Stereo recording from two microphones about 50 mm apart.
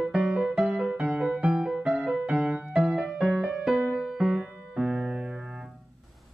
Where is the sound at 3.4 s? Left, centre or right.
Centre.